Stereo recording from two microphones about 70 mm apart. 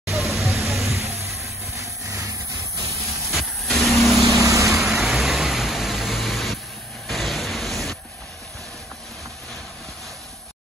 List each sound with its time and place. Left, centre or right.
0.1 s vehicle: centre
1.4 s vehicle: right
3.3 s vehicle: centre
4.4 s vehicle: right
4.6 s vehicle: centre
7.1 s a sound: centre